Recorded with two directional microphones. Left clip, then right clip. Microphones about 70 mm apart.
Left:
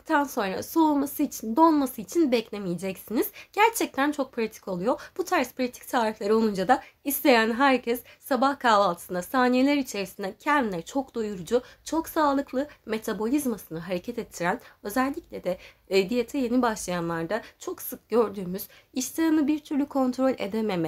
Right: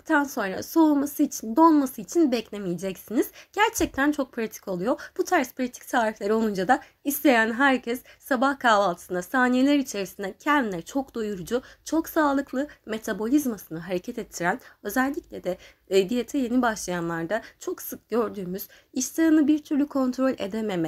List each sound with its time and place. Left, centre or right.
0.0 s a woman's voice: right
4.2 s speech: right
4.9 s a woman's voice: right